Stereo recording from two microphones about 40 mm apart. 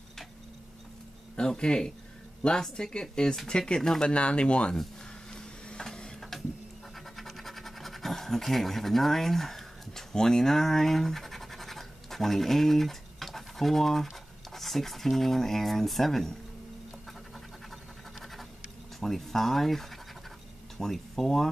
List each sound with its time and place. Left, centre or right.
1.4 s speech: centre
5.3 s a sound: centre
7.2 s scratch: centre
14.5 s speech: centre
18.9 s speech: centre